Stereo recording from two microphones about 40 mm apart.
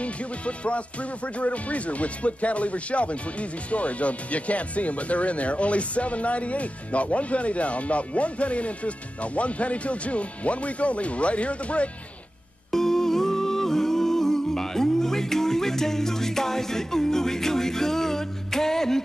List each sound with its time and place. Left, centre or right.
0.0 s music: left
12.7 s music: centre